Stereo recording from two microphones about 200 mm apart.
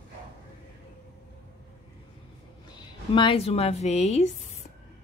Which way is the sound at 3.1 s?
25° left (ahead or behind).